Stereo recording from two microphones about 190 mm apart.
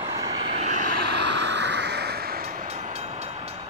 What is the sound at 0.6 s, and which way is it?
Vehicle, 40° right (ahead or behind).